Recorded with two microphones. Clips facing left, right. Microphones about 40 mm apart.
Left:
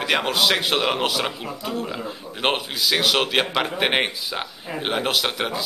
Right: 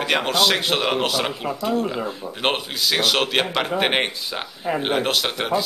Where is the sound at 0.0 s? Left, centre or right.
Centre.